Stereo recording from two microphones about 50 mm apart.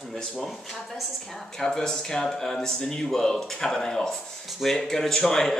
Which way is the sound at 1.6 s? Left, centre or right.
Centre.